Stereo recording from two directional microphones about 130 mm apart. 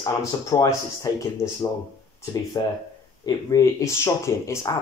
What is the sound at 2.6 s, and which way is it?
Speech, 30° left (ahead or behind).